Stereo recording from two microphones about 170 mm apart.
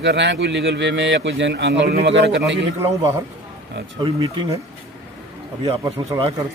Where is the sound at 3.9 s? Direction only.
30° right (ahead or behind).